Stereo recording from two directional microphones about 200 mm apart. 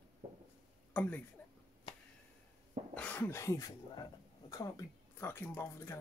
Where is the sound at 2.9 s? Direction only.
10° left (ahead or behind).